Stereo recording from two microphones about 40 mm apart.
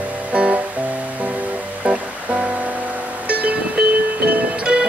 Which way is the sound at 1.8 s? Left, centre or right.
Right.